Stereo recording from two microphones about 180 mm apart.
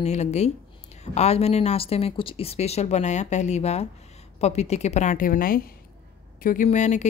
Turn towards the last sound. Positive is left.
turn(degrees=40)  # may be behind; listen again after turning